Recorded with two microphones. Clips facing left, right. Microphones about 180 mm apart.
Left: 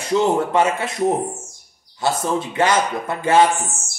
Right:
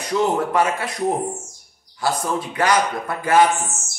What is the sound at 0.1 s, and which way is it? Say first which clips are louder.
Speech: left 2 dB; 25° left (ahead or behind).